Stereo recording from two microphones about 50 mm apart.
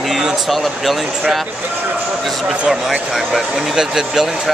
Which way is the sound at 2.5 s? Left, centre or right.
Centre.